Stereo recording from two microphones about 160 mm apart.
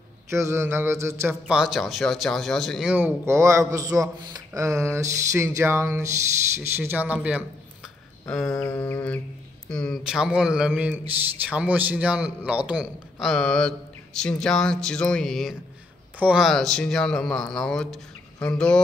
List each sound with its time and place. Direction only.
0.3 s speech: 20° right (ahead or behind)
1.3 s speech: 5° right (ahead or behind)
8.3 s a man's voice: 5° left (ahead or behind)
8.6 s a sound: 10° left (ahead or behind)
9.7 s a man's voice: 5° left (ahead or behind)